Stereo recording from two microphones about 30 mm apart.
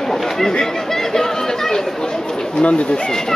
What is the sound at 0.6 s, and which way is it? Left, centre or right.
Chatter, centre.